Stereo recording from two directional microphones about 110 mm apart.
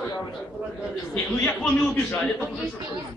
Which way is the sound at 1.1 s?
15° left (ahead or behind).